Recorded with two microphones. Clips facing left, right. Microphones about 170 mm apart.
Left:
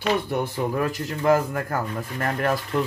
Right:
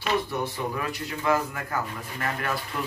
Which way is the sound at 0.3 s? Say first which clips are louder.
Left 5 dB; 50° left (ahead or behind).